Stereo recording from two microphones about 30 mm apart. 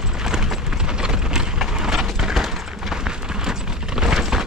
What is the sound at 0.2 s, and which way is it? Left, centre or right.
Clip-clop, right.